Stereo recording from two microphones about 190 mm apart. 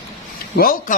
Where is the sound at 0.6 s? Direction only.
50° left (ahead or behind).